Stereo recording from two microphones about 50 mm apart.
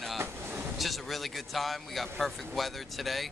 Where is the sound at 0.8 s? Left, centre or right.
Centre.